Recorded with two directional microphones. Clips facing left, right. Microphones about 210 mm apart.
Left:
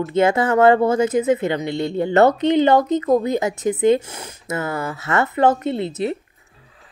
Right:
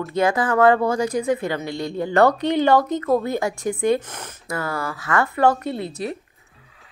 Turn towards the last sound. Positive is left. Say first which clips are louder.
# left 5 dB
turn(degrees=25)  # may be behind; listen again after turning